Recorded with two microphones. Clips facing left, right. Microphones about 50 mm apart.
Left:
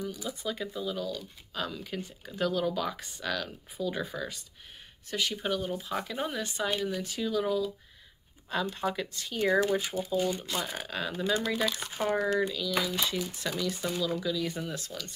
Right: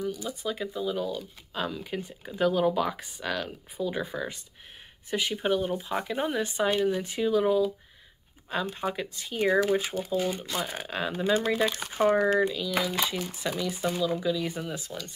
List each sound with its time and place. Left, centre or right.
0.3 s speech: centre; by 12.4 s right
12.5 s speech: centre